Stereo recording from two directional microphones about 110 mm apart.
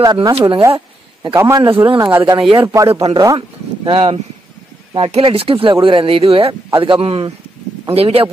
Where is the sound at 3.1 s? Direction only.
35° right (ahead or behind).